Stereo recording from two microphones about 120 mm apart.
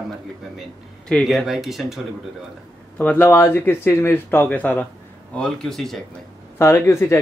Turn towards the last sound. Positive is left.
turn(degrees=25)  # may be behind; listen again after turning